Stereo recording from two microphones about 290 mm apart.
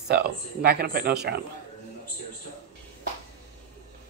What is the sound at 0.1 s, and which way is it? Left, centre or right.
Speech, right.